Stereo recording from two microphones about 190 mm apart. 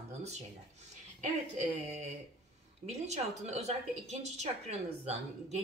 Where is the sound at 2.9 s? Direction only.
35° right (ahead or behind).